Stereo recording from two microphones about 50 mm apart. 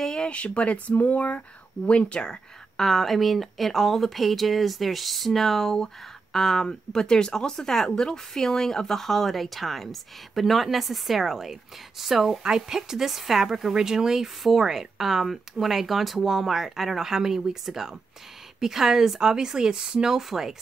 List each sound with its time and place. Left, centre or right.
0.0 s speech: centre
2.8 s a woman's voice: centre